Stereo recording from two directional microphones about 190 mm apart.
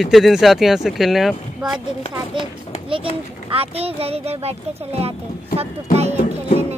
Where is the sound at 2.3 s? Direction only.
25° right (ahead or behind).